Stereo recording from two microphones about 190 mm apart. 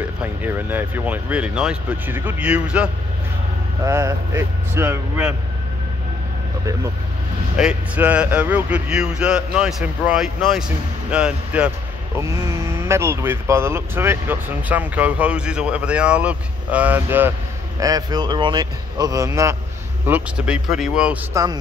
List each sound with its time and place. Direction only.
0.2 s speech: 10° right (ahead or behind)
7.5 s a man's voice: 5° right (ahead or behind)
12.2 s a man's voice: 15° right (ahead or behind)
21.3 s speech: 20° right (ahead or behind)